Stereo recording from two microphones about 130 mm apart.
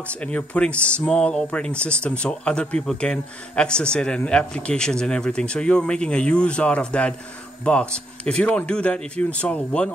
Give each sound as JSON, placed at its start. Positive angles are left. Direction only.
{"t": 0.3, "sound": "speech", "side_deg": 10}